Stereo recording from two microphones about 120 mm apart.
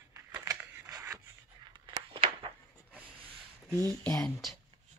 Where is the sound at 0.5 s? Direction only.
25° right (ahead or behind).